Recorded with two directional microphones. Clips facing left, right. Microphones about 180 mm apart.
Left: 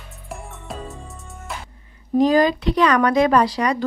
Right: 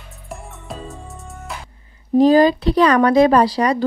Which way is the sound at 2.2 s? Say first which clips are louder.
Right 4 dB; 30° right (ahead or behind).